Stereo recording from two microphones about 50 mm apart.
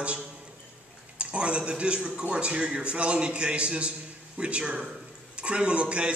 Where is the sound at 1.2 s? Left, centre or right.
Right.